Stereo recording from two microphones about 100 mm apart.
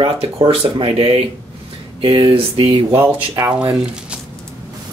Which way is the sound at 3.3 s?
35° right (ahead or behind).